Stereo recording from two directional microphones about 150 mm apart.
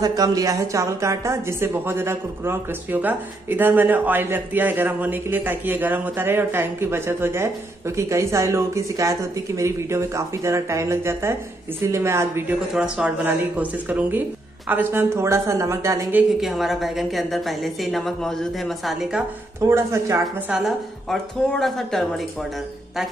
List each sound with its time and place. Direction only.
0.0 s a woman's voice: 25° right (ahead or behind)
16.3 s a woman's voice: centre (ahead or behind)
19.6 s a woman's voice: 20° right (ahead or behind)
20.5 s a woman's voice: centre (ahead or behind)